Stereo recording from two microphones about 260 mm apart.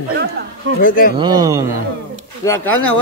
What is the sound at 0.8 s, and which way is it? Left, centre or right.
Speech, left.